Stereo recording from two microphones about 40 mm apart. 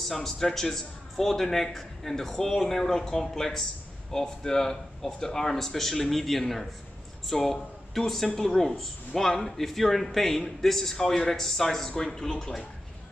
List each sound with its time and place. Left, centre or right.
0.1 s a man's voice: centre
12.2 s a man's voice: centre